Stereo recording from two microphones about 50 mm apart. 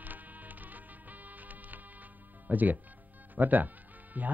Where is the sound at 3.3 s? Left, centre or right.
Right.